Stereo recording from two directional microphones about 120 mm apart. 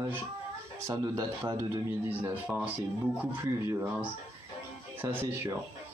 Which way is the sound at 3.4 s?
20° right (ahead or behind).